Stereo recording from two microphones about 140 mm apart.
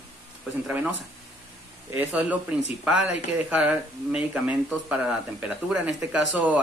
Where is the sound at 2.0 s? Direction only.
10° right (ahead or behind).